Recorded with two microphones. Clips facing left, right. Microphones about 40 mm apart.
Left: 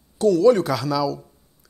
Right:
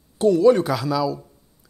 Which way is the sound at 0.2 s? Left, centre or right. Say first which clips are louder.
Even; right.